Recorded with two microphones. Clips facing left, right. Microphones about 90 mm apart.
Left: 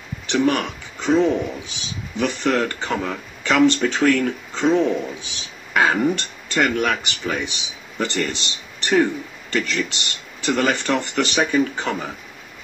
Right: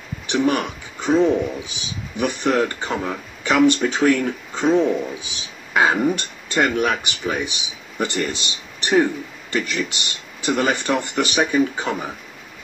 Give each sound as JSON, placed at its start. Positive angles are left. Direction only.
{"t": 0.3, "sound": "speech", "side_deg": -15}